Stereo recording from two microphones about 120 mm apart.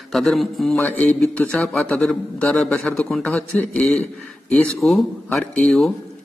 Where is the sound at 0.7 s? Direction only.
15° left (ahead or behind).